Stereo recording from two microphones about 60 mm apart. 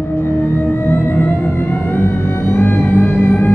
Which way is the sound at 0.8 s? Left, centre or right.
Left.